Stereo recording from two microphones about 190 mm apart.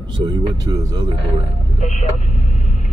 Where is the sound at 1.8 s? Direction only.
40° left (ahead or behind).